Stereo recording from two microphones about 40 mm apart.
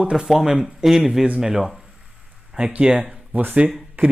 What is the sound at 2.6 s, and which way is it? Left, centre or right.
Speech, right.